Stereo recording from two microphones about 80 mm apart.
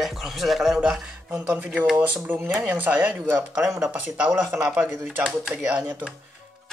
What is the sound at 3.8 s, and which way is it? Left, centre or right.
Speech, centre.